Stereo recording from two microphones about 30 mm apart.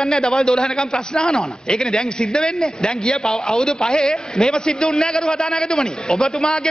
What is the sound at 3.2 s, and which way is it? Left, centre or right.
A man's voice, centre.